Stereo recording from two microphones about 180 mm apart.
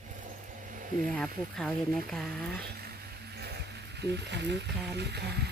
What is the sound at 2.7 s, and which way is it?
Music, 60° right (ahead or behind).